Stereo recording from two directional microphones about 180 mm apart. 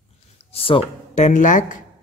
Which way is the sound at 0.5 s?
30° left (ahead or behind).